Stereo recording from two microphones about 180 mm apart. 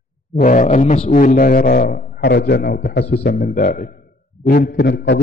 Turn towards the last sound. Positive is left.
turn(degrees=65)  # may be behind; listen again after turning